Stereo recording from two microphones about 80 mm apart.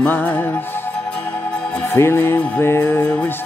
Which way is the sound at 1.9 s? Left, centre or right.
Left.